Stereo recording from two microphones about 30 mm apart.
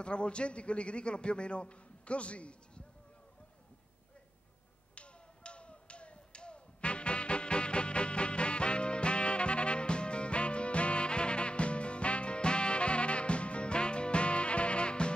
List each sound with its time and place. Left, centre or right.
0.0 s a man's voice: left
4.9 s finger snapping: left